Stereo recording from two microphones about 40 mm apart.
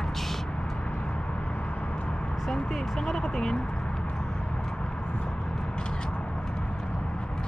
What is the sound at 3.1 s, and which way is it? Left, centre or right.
Speech, centre.